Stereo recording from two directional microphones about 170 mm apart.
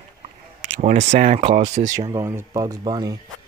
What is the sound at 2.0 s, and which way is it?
Speech, 20° right (ahead or behind).